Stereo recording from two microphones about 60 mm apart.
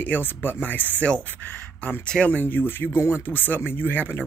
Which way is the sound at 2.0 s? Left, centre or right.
Centre.